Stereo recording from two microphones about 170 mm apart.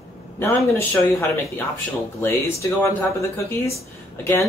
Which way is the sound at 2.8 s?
15° left (ahead or behind).